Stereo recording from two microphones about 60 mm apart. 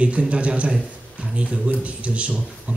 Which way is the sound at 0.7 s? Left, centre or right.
Centre.